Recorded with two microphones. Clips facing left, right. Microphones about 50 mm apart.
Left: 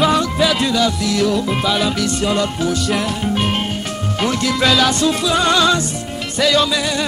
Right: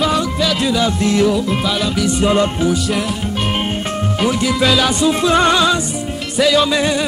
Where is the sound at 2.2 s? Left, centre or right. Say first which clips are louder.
Right 6 dB; right.